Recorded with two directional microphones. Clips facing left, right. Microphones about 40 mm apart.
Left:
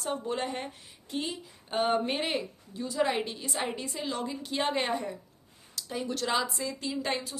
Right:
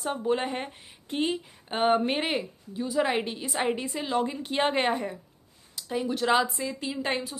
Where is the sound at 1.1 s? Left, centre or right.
Right.